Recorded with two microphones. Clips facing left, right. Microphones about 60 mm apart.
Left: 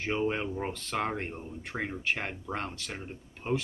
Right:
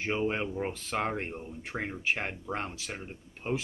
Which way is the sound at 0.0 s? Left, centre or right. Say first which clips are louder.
Even; centre.